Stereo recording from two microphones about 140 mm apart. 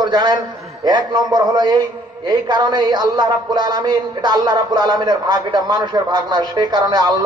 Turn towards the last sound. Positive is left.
turn(degrees=-30)  # may be behind; listen again after turning